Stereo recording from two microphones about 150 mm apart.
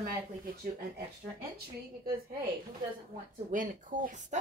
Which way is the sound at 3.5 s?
60° right (ahead or behind).